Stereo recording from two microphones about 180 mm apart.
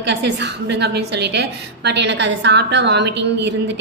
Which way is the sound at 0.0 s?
70° right (ahead or behind).